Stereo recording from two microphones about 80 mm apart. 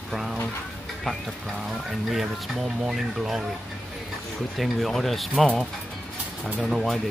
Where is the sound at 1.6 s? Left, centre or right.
Centre.